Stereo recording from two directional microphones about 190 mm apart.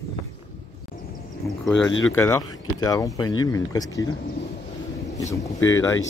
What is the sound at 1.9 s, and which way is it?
Speech, 90° left.